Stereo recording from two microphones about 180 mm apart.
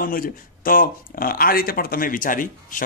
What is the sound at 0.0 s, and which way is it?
Speech, 50° left (ahead or behind).